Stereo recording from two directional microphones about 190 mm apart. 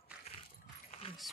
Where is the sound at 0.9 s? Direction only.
30° left (ahead or behind).